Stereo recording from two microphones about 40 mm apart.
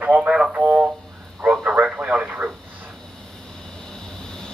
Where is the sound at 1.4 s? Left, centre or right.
Right.